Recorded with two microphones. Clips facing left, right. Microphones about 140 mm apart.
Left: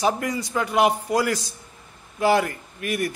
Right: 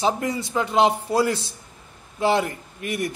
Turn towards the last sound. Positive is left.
turn(degrees=-20)  # may be behind; listen again after turning